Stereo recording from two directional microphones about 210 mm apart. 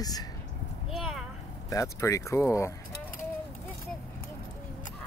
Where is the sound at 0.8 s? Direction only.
Centre (ahead or behind).